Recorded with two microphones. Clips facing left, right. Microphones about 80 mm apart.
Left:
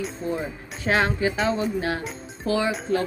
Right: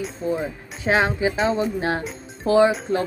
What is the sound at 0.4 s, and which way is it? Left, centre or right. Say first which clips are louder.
Speech: right 2 dB; centre.